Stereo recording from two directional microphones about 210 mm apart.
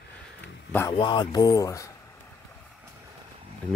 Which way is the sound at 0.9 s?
25° left (ahead or behind).